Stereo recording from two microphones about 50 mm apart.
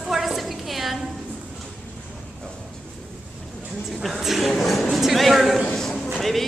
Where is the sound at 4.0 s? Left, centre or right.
Centre.